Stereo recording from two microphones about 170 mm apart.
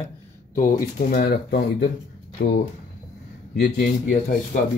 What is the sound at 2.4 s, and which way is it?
Speech, 90° left.